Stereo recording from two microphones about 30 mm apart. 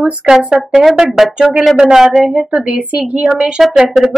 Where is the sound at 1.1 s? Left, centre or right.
Centre.